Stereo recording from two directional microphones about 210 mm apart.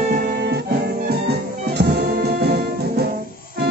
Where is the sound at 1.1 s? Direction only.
50° right (ahead or behind).